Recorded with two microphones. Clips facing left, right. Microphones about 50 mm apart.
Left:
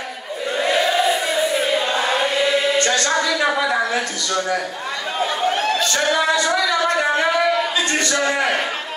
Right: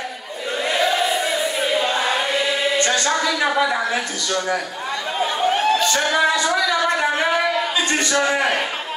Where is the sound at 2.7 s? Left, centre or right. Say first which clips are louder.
Left 1 dB; centre.